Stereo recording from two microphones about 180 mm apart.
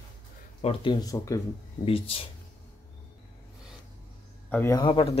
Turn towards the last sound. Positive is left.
turn(degrees=30)  # may be behind; listen again after turning